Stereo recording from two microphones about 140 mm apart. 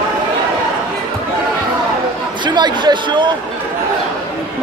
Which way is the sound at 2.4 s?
30° right (ahead or behind).